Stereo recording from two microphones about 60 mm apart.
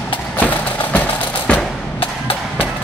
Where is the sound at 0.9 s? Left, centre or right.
Left.